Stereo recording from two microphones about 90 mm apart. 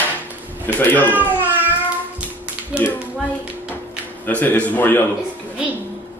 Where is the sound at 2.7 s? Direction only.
10° right (ahead or behind).